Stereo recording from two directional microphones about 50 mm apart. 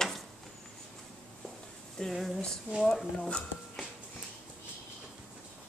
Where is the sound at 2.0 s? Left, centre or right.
Centre.